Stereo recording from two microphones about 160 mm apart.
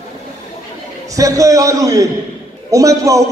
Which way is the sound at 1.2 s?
20° right (ahead or behind).